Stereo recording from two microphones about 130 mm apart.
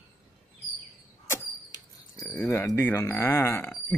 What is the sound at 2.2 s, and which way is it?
Speech, 20° left (ahead or behind).